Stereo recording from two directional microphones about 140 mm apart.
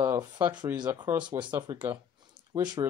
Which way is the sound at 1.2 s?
35° right (ahead or behind).